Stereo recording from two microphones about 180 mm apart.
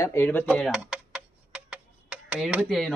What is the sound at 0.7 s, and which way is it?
Speech, 5° right (ahead or behind).